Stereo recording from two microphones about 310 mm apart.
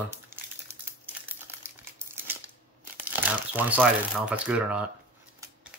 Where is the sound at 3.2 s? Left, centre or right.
Centre.